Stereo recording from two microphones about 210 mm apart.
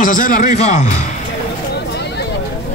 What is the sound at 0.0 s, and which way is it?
Speech, 40° left (ahead or behind).